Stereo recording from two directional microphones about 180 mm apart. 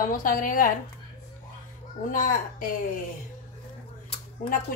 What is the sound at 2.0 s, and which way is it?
Speech, 50° left (ahead or behind).